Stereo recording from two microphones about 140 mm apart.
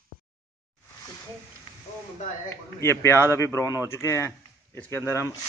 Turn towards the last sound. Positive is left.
turn(degrees=20)  # may be behind; listen again after turning